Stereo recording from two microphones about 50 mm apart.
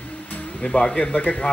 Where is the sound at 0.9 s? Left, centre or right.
Left.